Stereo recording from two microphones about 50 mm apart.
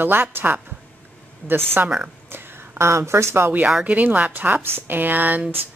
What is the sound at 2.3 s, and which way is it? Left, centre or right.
Speech, right.